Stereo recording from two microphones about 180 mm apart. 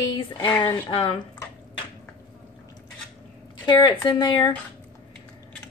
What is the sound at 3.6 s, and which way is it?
Speech, 25° left (ahead or behind).